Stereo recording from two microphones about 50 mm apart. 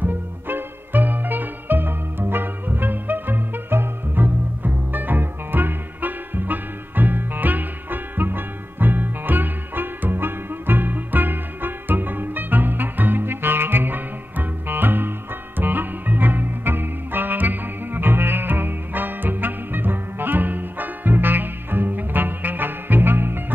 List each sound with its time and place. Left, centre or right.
0.0 s music: right